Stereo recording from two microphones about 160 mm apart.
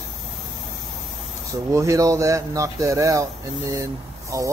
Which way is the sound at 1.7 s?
20° right (ahead or behind).